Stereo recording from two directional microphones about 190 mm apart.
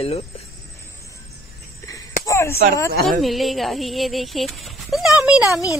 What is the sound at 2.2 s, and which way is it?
Speech, 15° left (ahead or behind).